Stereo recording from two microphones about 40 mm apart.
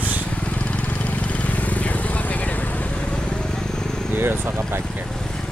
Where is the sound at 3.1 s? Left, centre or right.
Centre.